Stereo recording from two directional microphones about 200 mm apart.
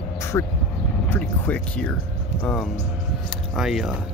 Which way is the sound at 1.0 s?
5° left (ahead or behind).